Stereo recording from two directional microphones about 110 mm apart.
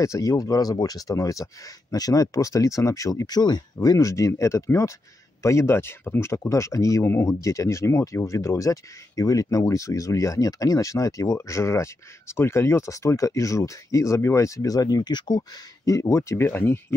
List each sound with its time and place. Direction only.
0.0 s speech: 30° left (ahead or behind)